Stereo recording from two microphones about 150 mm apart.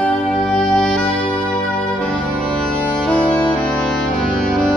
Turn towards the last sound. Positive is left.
turn(degrees=5)  # may be behind; listen again after turning